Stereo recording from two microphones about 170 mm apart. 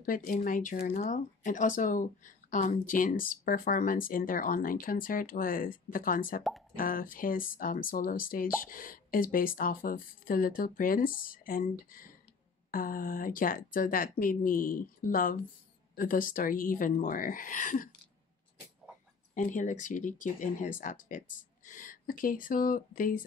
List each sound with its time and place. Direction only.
0.0 s speech: 55° left (ahead or behind)
19.3 s speech: 50° left (ahead or behind)